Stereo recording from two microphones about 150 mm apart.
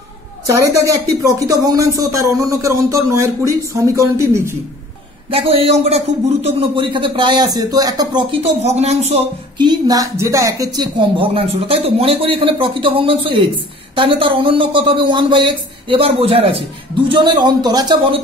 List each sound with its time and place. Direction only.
0.5 s speech: 20° right (ahead or behind)
5.3 s a man's voice: 40° right (ahead or behind)
9.6 s a man's voice: 25° right (ahead or behind)